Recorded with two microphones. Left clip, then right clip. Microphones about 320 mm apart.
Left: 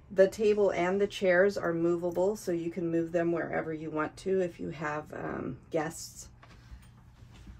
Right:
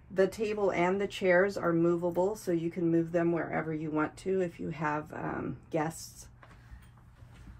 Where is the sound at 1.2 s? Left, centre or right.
Right.